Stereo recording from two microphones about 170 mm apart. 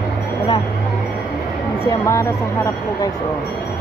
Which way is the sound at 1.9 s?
15° left (ahead or behind).